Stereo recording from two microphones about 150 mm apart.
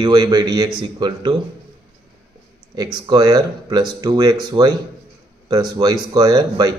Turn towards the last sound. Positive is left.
turn(degrees=-25)  # may be behind; listen again after turning